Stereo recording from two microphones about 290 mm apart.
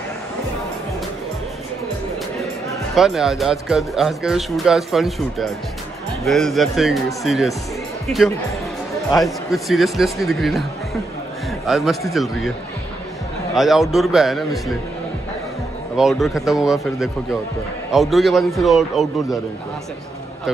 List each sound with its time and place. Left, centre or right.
2.9 s speech: centre
13.6 s speech: centre
16.0 s speech: centre